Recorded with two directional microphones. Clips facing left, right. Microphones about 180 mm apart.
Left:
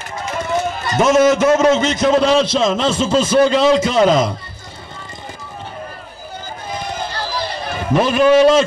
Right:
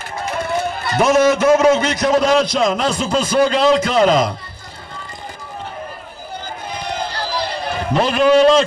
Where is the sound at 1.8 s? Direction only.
25° left (ahead or behind).